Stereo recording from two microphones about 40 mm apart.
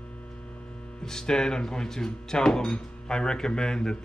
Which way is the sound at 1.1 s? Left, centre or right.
Centre.